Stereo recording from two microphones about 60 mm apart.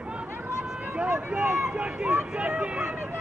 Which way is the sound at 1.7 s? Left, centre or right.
Centre.